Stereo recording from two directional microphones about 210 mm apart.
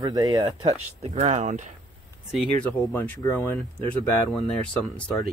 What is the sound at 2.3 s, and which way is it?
Speech, 5° left (ahead or behind).